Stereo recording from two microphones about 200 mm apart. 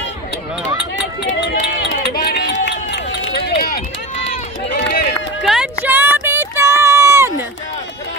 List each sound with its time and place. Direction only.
1.2 s run: 60° left (ahead or behind)
5.4 s run: centre (ahead or behind)
5.9 s a sound: 10° right (ahead or behind)